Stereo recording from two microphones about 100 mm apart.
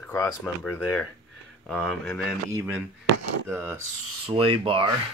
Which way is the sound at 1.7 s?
15° left (ahead or behind).